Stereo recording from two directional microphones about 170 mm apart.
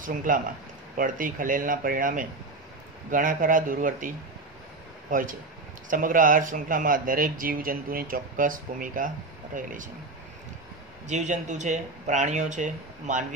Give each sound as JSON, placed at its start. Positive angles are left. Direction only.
{"t": 0.0, "sound": "speech", "side_deg": -50}
{"t": 5.9, "sound": "speech", "side_deg": -50}
{"t": 11.1, "sound": "speech", "side_deg": -45}